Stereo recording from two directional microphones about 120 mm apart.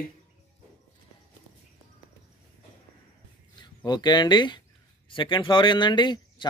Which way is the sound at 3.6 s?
35° left (ahead or behind).